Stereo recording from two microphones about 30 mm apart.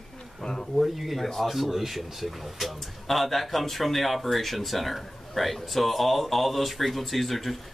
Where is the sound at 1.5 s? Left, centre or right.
Centre.